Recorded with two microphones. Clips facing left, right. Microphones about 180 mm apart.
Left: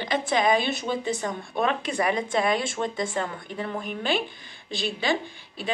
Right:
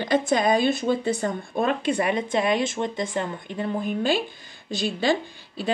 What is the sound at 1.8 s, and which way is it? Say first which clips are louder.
Speech: right 2 dB; 25° right (ahead or behind).